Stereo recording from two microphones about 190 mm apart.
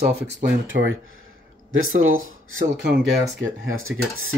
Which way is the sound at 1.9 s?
90° right.